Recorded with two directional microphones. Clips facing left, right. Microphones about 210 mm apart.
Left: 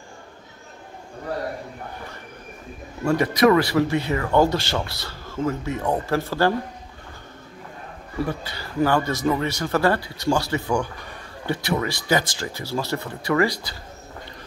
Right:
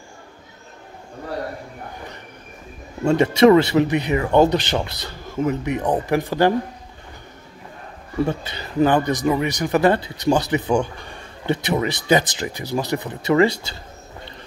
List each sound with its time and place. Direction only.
3.0 s speech: 25° right (ahead or behind)
8.3 s speech: 20° right (ahead or behind)